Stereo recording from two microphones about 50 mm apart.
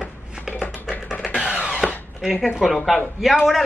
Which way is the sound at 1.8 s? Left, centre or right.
Centre.